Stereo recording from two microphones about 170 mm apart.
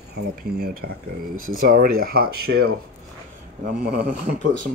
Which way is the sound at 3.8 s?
50° right (ahead or behind).